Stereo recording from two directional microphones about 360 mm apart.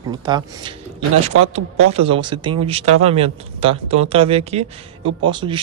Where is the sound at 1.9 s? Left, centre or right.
Centre.